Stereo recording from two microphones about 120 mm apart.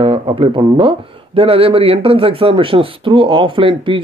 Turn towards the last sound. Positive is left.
turn(degrees=-45)  # may be behind; listen again after turning